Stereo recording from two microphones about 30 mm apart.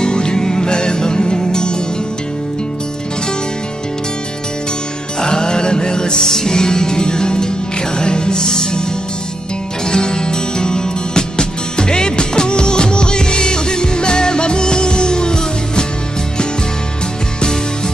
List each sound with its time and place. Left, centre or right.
0.0 s music: left
5.2 s music: left